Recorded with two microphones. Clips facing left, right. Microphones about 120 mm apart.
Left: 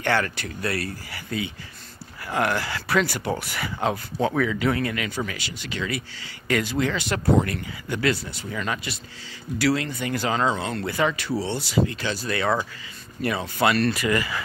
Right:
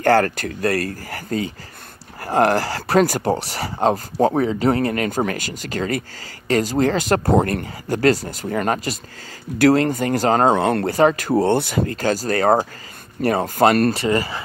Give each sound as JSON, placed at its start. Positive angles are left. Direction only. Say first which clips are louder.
{"t": 0.0, "sound": "speech", "louder": "right 8 dB", "side_deg": -40}
{"t": 10.9, "sound": "speech", "louder": "right 5 dB", "side_deg": -40}